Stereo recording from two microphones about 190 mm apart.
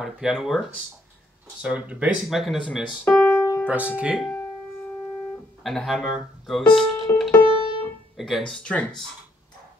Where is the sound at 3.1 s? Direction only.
15° left (ahead or behind).